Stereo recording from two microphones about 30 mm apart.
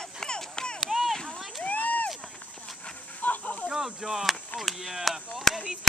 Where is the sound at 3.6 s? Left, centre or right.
Right.